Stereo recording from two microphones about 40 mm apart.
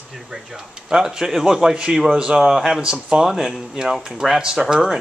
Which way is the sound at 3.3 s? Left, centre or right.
Centre.